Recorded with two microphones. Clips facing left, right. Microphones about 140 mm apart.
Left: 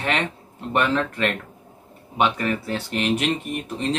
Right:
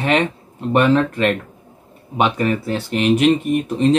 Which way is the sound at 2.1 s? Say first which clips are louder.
Right 4 dB; 20° right (ahead or behind).